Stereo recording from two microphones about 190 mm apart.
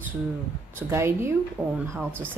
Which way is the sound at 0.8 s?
15° right (ahead or behind).